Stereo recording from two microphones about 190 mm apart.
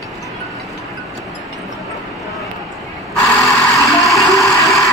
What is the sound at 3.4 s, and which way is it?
Music, centre (ahead or behind).